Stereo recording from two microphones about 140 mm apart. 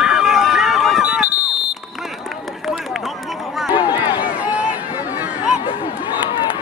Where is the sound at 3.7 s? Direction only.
25° left (ahead or behind).